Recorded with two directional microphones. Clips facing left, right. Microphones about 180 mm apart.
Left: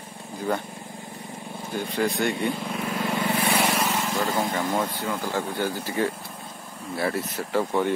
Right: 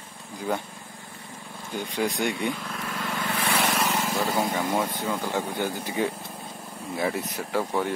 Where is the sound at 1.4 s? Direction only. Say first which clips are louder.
Left 5 dB; 20° left (ahead or behind).